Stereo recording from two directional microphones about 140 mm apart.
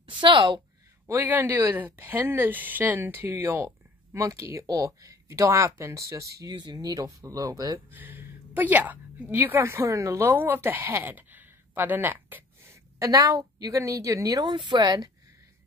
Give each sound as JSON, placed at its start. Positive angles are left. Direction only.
{"t": 0.0, "sound": "a woman's voice", "side_deg": -35}
{"t": 1.0, "sound": "a woman's voice", "side_deg": -20}
{"t": 7.9, "sound": "a woman's voice", "side_deg": -15}